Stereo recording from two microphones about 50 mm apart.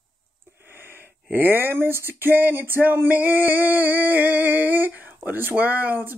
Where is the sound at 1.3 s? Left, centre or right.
Right.